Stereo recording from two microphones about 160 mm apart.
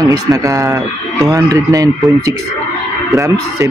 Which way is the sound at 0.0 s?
20° right (ahead or behind).